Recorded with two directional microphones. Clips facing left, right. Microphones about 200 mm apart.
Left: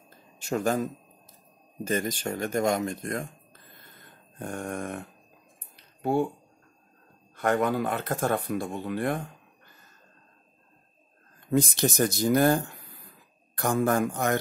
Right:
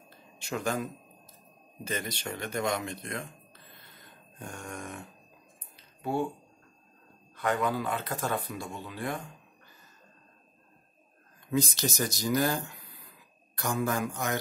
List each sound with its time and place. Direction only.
0.1 s a sound: 45° left (ahead or behind)
1.9 s speech: 45° left (ahead or behind)
7.3 s speech: 50° left (ahead or behind)
11.5 s speech: 55° left (ahead or behind)